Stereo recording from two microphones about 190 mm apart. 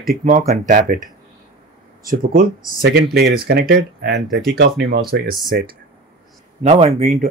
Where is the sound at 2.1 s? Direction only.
50° right (ahead or behind).